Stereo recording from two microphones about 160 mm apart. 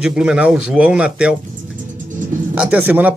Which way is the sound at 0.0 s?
5° right (ahead or behind).